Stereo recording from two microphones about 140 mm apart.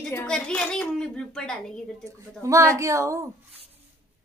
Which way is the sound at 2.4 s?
20° right (ahead or behind).